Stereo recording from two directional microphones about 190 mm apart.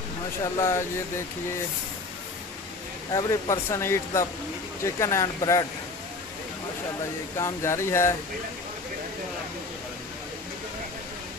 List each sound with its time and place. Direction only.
0.6 s speech: 15° left (ahead or behind)
3.1 s speech: 15° left (ahead or behind)
7.3 s speech: 15° left (ahead or behind)